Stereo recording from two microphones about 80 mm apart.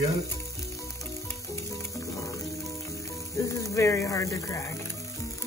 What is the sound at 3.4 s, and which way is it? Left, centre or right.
Speech, left.